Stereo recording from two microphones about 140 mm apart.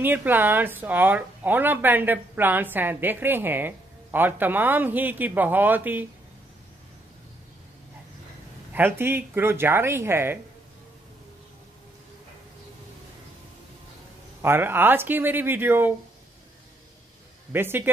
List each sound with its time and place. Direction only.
0.0 s speech: 15° right (ahead or behind)
8.7 s speech: 15° right (ahead or behind)
14.4 s speech: 15° right (ahead or behind)
17.5 s speech: 15° right (ahead or behind)